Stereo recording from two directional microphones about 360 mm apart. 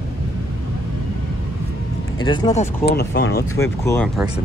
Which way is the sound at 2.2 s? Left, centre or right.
Centre.